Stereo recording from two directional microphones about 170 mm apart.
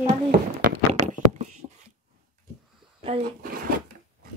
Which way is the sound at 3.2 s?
60° right (ahead or behind).